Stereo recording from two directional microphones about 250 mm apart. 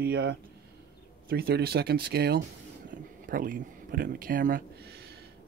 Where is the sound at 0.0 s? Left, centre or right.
Right.